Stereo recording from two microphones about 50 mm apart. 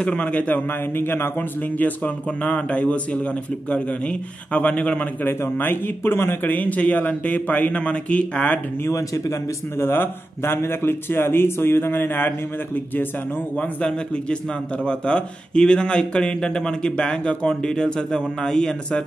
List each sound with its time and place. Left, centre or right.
0.0 s a man's voice: left
0.9 s a man's voice: left
2.2 s a man's voice: left
5.2 s speech: left
6.4 s a man's voice: left
8.8 s speech: left
9.8 s speech: left
13.6 s a man's voice: left